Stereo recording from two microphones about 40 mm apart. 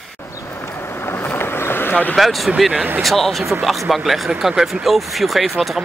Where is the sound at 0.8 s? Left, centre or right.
Left.